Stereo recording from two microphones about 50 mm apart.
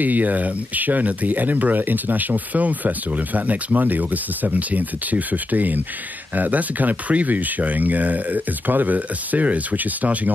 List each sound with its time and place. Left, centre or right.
0.0 s speech: right